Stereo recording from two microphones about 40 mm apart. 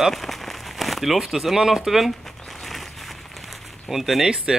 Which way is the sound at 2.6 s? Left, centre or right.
Centre.